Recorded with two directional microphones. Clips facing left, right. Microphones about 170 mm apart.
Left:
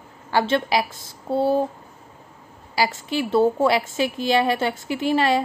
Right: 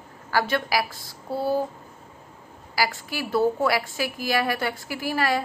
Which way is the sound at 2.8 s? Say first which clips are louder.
Left 4 dB; 20° left (ahead or behind).